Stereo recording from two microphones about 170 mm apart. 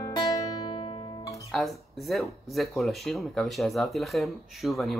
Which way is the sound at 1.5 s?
Centre (ahead or behind).